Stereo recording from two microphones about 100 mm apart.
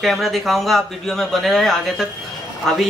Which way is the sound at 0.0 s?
Centre (ahead or behind).